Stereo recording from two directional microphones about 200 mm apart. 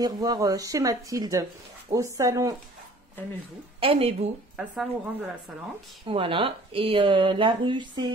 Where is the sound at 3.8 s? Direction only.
30° right (ahead or behind).